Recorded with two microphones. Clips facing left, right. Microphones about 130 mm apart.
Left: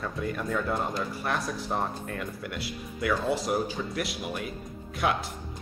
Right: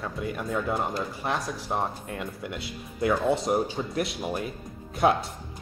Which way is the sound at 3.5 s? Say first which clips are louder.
Right 3 dB; 30° right (ahead or behind).